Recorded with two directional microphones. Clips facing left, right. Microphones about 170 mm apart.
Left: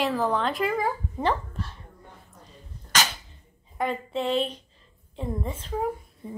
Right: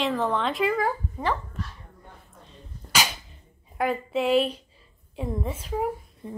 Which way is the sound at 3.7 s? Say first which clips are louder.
Right 2 dB; 5° right (ahead or behind).